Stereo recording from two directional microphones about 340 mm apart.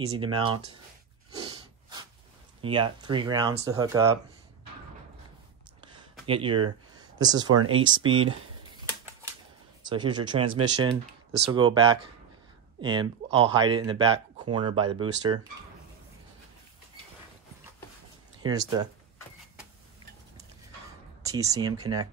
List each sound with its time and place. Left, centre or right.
0.1 s speech: centre
1.4 s snort: centre
2.6 s speech: centre
5.8 s a sound: centre
7.5 s speech: right
9.8 s speech: centre
18.4 s speech: centre
21.2 s speech: centre